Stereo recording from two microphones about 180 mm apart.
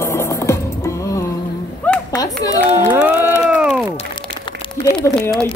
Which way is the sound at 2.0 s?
20° left (ahead or behind).